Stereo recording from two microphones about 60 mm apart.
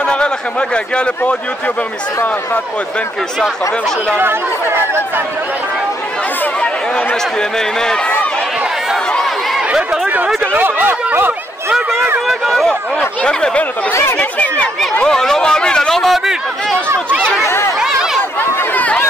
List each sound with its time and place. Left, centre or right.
0.0 s speech: centre
4.2 s speech: right
6.6 s speech: centre
9.7 s speech: right
12.3 s speech: centre
13.2 s speech: centre
15.0 s speech: centre
17.4 s speech: left
17.7 s chatter: centre